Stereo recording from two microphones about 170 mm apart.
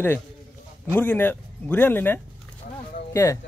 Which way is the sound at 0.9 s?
10° left (ahead or behind).